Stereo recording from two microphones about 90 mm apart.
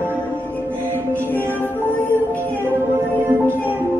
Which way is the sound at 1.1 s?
20° left (ahead or behind).